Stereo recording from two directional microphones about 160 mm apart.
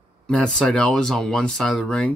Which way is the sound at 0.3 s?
5° left (ahead or behind).